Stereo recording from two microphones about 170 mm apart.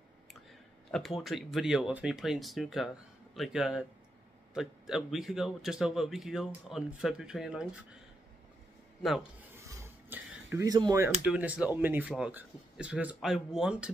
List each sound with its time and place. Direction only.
0.9 s speech: centre (ahead or behind)
9.8 s a sound: 10° right (ahead or behind)
11.3 s speech: 5° right (ahead or behind)